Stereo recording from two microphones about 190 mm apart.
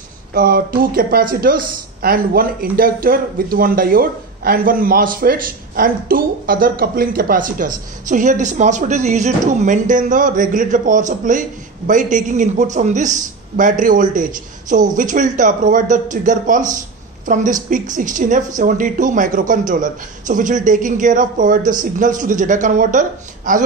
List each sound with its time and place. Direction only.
0.3 s a woman's voice: 50° right (ahead or behind)